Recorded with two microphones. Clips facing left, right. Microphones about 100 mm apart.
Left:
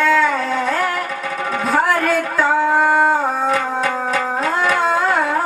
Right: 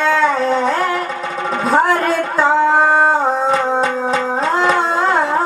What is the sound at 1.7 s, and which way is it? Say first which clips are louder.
Singing: right 2 dB; 25° right (ahead or behind).